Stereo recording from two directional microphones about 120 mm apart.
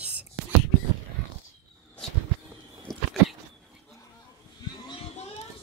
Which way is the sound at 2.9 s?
Centre (ahead or behind).